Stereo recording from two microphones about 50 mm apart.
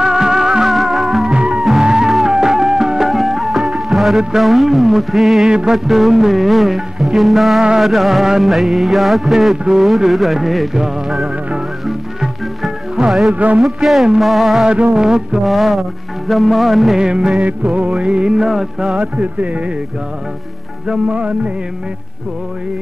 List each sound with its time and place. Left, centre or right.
0.0 s music: centre
1.3 s music: right; by 5.5 s centre
5.5 s music: centre
13.3 s music: right
13.6 s music: centre
15.0 s music: centre
15.4 s music: centre
17.0 s music: centre
17.4 s music: right
18.9 s music: right
20.9 s music: right